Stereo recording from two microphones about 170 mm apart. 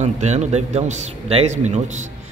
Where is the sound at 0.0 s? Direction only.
40° right (ahead or behind).